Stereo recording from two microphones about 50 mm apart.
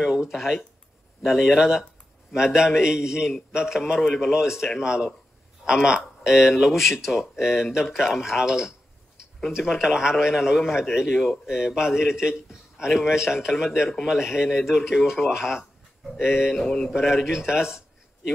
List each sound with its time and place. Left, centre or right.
0.0 s speech: centre
16.5 s mantra: centre
16.9 s speech: centre